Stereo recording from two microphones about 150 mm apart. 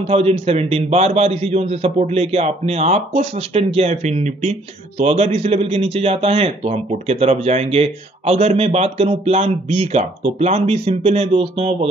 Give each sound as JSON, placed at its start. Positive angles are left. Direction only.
{"t": 0.0, "sound": "a man's voice", "side_deg": -40}